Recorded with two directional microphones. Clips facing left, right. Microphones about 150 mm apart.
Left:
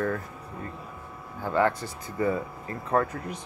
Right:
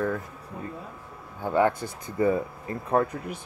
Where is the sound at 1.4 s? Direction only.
15° right (ahead or behind).